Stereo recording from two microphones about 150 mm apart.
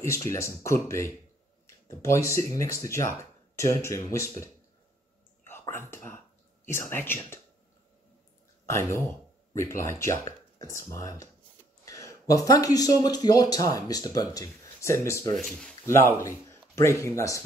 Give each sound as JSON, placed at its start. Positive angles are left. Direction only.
{"t": 0.3, "sound": "speech", "side_deg": 20}
{"t": 5.4, "sound": "whispering", "side_deg": 15}
{"t": 8.6, "sound": "speech", "side_deg": 20}
{"t": 15.3, "sound": "speech", "side_deg": 0}
{"t": 15.9, "sound": "speech", "side_deg": 15}